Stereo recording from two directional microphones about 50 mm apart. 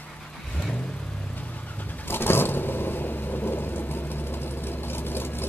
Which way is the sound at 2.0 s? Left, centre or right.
Left.